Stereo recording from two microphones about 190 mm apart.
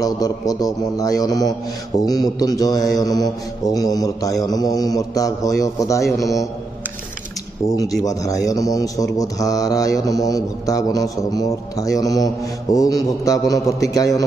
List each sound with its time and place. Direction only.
0.0 s a man's voice: 20° left (ahead or behind)
7.7 s a man's voice: 20° left (ahead or behind)